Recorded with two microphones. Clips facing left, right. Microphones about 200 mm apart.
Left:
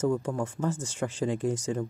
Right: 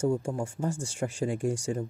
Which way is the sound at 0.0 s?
10° right (ahead or behind).